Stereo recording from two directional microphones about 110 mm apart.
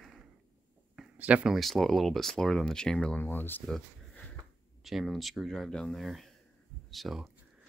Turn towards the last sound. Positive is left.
turn(degrees=0)  # may be behind; listen again after turning